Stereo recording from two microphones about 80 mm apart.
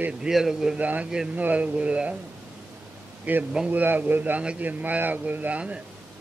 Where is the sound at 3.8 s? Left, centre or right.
Right.